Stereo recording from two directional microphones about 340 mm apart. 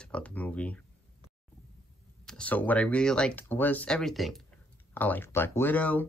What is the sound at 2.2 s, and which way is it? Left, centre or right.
Speech, centre.